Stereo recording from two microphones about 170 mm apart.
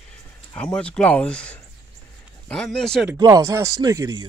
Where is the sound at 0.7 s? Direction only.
5° left (ahead or behind).